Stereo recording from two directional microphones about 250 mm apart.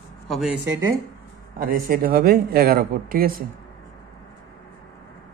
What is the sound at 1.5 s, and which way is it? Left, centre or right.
A man's voice, right.